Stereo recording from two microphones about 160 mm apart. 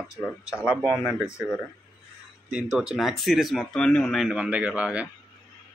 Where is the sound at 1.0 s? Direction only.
5° right (ahead or behind).